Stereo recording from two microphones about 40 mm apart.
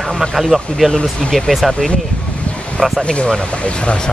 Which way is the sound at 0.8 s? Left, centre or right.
Left.